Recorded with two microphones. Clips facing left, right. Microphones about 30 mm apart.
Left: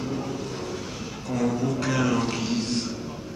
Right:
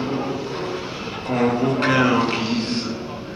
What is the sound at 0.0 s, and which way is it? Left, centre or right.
Vehicle, right.